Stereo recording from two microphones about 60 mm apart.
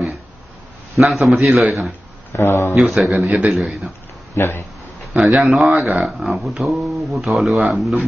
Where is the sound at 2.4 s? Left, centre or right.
Left.